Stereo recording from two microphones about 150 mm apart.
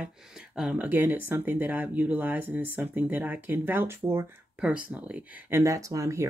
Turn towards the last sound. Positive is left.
turn(degrees=-20)  # may be behind; listen again after turning